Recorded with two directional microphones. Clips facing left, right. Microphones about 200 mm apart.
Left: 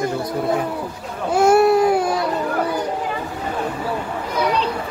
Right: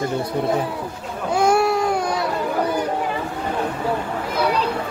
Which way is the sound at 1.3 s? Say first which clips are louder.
Left 4 dB; 5° left (ahead or behind).